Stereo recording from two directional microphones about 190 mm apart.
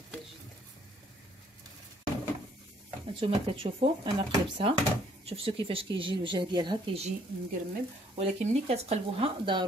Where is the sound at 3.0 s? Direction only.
30° right (ahead or behind).